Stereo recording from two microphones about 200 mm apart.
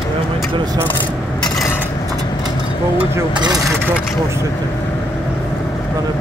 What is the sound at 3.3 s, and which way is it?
Speech, 20° right (ahead or behind).